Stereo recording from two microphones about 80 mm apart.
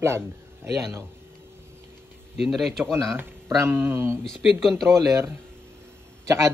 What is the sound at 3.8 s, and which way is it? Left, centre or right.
Speech, right.